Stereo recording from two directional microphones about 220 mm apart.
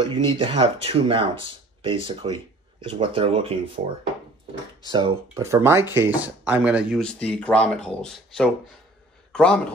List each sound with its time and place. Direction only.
0.0 s speech: 20° right (ahead or behind)
4.8 s a man's voice: 20° right (ahead or behind); by 9.6 s 5° left (ahead or behind)